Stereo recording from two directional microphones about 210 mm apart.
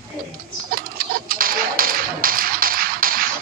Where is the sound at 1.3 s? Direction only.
45° right (ahead or behind).